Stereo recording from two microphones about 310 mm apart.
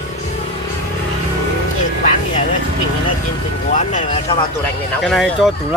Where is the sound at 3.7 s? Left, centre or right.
Left.